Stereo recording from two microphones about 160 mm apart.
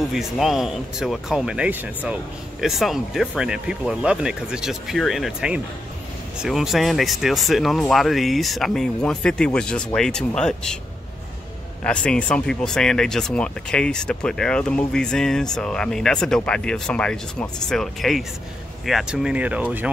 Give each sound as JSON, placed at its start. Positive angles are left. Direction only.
{"t": 0.1, "sound": "speech", "side_deg": 0}
{"t": 11.8, "sound": "speech", "side_deg": 5}